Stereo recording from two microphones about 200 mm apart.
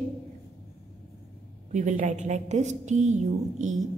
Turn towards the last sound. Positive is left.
turn(degrees=-35)  # may be behind; listen again after turning